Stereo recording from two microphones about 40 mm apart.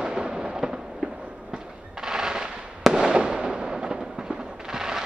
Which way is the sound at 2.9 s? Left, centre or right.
Centre.